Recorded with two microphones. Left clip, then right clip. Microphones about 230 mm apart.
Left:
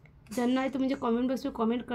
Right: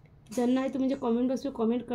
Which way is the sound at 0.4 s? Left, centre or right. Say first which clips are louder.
Right 1 dB; left.